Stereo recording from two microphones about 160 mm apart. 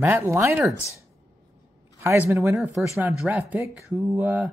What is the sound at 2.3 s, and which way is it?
Speech, 15° right (ahead or behind).